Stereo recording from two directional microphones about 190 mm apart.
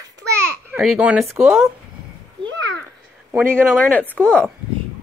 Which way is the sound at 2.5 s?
75° right (ahead or behind).